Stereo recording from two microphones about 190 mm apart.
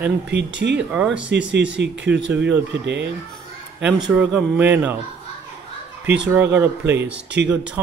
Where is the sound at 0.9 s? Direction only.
5° right (ahead or behind).